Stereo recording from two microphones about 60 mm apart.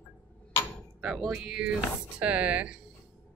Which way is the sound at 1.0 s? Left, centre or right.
Centre.